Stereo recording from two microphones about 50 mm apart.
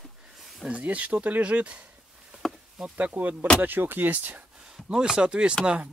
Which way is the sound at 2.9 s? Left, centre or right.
Right.